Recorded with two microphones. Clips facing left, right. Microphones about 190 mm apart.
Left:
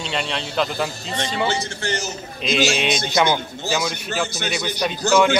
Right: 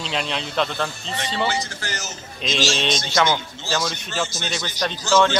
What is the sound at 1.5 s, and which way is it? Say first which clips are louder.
Speech: left 4 dB; 30° left (ahead or behind).